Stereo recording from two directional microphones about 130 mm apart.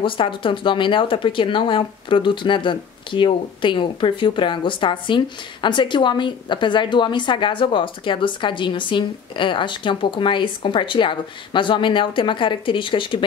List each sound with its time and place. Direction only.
0.0 s speech: 40° left (ahead or behind)